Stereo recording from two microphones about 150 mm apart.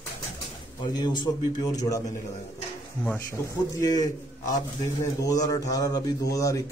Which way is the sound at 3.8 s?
25° left (ahead or behind).